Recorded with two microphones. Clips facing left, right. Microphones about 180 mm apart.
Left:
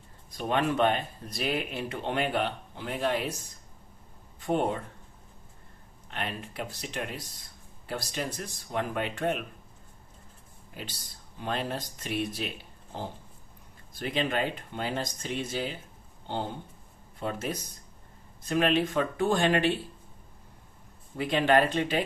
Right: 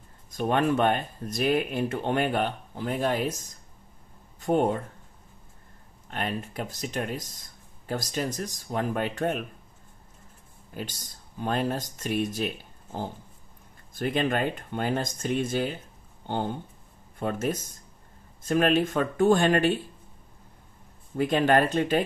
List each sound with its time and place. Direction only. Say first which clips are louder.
0.3 s speech: right 4 dB; 45° right (ahead or behind)
6.0 s speech: right 4 dB; 45° right (ahead or behind)
10.7 s speech: right 5 dB; 45° right (ahead or behind)
21.2 s speech: right 2 dB; 45° right (ahead or behind)